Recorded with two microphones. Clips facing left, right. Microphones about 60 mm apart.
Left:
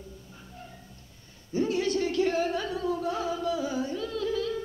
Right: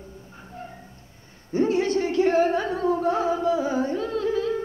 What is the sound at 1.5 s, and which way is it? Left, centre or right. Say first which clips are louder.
Music: right 5 dB; right.